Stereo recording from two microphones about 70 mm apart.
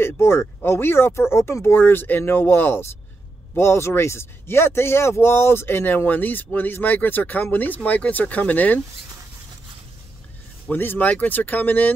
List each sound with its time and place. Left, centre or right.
0.0 s speech: left
10.7 s speech: left